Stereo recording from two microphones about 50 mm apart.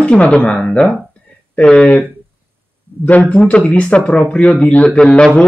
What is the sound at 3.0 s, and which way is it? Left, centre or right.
Speech, left.